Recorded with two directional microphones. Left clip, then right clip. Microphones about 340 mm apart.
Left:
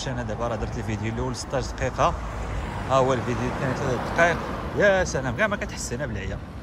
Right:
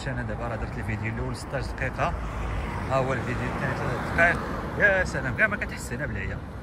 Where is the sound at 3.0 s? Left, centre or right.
Centre.